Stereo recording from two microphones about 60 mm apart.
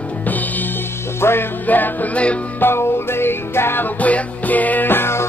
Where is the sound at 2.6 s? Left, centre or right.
Left.